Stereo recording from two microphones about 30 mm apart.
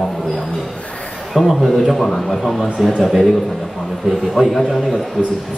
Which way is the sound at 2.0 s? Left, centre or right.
Centre.